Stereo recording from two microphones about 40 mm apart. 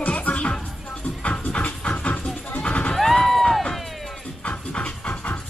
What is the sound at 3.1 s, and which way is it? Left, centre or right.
Crowd, centre.